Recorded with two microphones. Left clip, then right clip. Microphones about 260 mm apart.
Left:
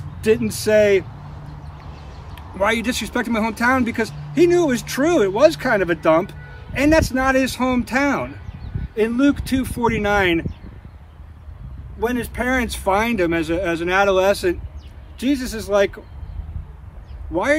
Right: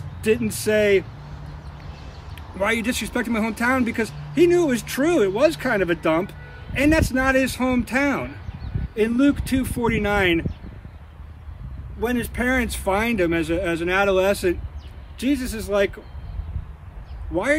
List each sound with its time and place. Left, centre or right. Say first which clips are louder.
0.2 s speech: left 3 dB; centre
2.3 s speech: left 3 dB; centre
12.0 s speech: left 2 dB; centre
17.3 s speech: left 3 dB; centre